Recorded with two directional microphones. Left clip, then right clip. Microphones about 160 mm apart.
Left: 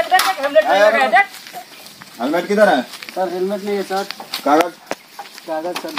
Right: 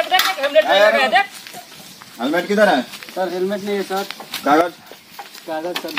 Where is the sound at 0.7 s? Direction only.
Centre (ahead or behind).